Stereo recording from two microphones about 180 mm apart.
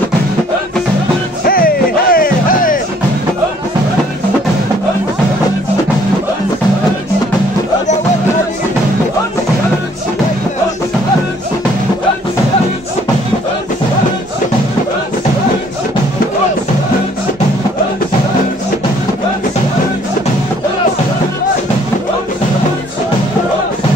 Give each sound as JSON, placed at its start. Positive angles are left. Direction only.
{"t": 1.4, "sound": "music", "side_deg": 55}